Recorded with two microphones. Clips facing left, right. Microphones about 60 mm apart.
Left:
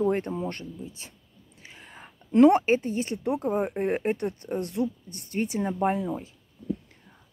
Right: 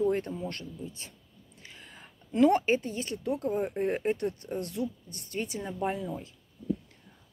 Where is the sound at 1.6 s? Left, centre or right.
Left.